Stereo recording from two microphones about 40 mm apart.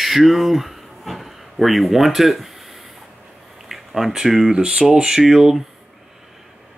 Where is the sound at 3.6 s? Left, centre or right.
Centre.